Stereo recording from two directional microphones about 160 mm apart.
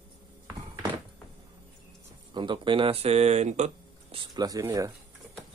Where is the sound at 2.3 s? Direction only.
30° right (ahead or behind).